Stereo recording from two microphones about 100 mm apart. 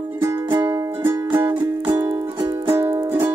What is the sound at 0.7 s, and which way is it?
Music, 20° right (ahead or behind).